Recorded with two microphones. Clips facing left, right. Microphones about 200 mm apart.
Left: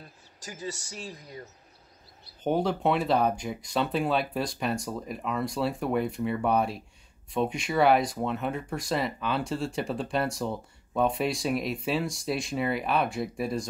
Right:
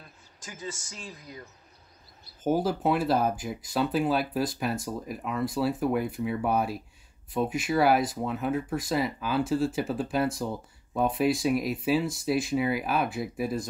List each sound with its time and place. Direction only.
0.0 s speech: 40° left (ahead or behind)
2.4 s speech: 5° right (ahead or behind)